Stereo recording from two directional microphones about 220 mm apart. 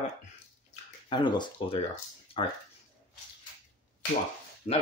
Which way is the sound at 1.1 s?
20° left (ahead or behind).